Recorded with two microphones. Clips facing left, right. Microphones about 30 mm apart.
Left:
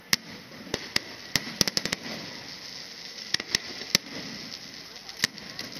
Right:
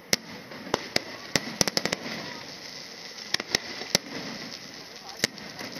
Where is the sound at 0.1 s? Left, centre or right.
Centre.